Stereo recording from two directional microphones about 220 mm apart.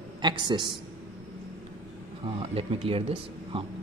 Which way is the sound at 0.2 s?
20° right (ahead or behind).